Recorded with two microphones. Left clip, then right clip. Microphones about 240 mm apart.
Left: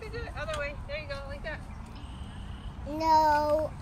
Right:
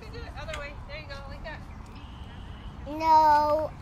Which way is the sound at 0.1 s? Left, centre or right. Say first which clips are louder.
Left 2 dB; right.